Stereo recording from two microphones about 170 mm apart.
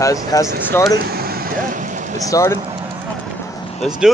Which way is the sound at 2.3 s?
20° left (ahead or behind).